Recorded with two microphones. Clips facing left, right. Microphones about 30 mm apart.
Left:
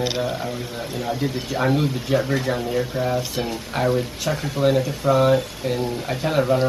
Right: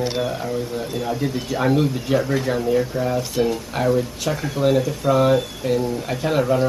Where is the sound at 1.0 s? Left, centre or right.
Centre.